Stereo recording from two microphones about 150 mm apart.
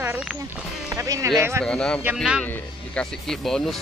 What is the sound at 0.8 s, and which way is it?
Music, 20° right (ahead or behind).